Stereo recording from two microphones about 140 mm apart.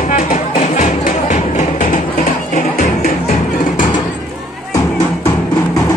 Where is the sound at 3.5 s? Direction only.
70° left (ahead or behind).